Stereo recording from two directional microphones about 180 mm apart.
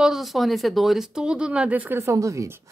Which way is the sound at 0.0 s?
Centre (ahead or behind).